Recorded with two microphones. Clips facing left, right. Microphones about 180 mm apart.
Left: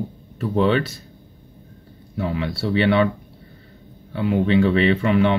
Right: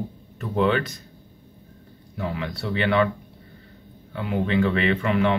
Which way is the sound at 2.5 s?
30° left (ahead or behind).